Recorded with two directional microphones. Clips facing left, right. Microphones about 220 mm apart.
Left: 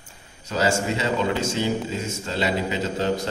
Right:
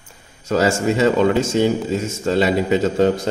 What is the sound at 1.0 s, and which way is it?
Speech, 50° right (ahead or behind).